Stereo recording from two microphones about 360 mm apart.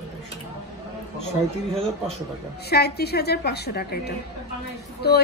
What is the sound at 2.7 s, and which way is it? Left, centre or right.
A woman's voice, left.